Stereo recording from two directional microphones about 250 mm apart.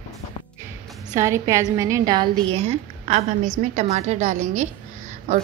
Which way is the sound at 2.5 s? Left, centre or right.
Right.